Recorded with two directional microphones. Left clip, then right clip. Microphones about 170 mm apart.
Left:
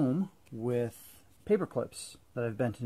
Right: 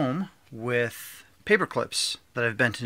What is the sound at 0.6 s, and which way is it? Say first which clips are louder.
Speech: right 6 dB; 10° right (ahead or behind).